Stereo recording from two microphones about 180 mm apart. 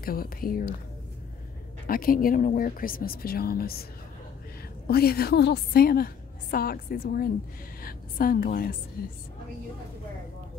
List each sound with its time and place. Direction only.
0.0 s speech: 55° left (ahead or behind)
1.9 s speech: 55° left (ahead or behind)
4.8 s a woman's voice: 60° left (ahead or behind)